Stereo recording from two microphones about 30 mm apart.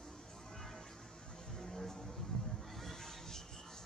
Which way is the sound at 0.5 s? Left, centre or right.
Centre.